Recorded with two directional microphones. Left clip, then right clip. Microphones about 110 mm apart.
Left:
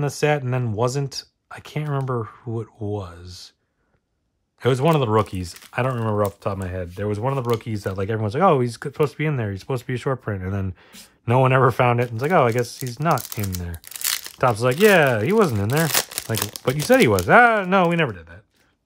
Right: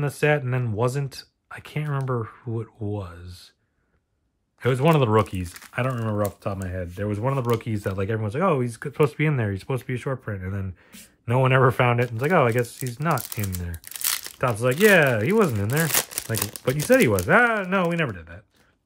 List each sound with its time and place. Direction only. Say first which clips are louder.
0.0 s speech: left 1 dB; 20° left (ahead or behind)
4.6 s speech: left 1 dB; 20° left (ahead or behind)
5.2 s speech: left 1 dB; 25° left (ahead or behind)
6.4 s speech: left 3 dB; 45° left (ahead or behind)
7.6 s speech: left 1 dB; 15° left (ahead or behind)
8.3 s speech: left 7 dB; 35° left (ahead or behind)
8.9 s speech: right 1 dB; 15° left (ahead or behind)
9.9 s speech: left 5 dB; 35° left (ahead or behind); by 14.3 s 5° left (ahead or behind)
14.7 s speech: left 1 dB; 25° left (ahead or behind)
18.1 s speech: even; 20° left (ahead or behind)